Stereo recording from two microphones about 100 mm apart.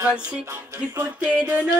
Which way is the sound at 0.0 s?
10° right (ahead or behind).